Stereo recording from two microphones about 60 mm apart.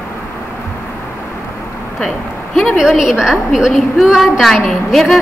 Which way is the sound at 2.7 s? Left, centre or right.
Centre.